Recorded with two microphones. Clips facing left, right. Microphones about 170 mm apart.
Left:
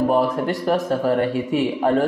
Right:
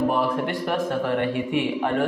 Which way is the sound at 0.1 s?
40° left (ahead or behind).